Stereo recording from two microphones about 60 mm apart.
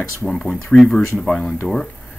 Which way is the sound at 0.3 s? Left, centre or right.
Centre.